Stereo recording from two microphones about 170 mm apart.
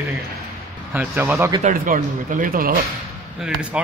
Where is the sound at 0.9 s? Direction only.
15° right (ahead or behind).